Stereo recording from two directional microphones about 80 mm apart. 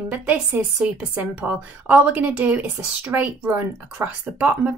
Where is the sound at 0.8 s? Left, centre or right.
Right.